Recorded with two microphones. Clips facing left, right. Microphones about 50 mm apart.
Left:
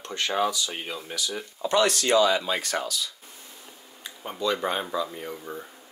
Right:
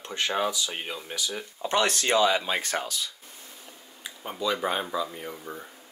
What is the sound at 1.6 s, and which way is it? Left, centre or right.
Speech, right.